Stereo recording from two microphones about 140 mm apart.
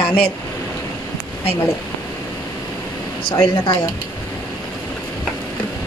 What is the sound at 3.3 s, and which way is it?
Speech, 35° left (ahead or behind).